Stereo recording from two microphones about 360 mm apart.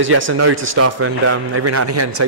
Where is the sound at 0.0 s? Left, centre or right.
Right.